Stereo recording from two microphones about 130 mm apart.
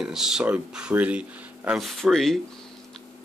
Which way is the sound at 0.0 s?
5° right (ahead or behind).